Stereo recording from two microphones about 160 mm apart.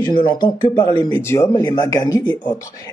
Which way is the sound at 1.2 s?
15° left (ahead or behind).